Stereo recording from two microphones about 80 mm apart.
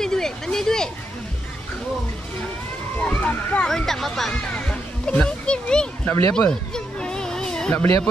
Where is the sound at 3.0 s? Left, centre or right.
Centre.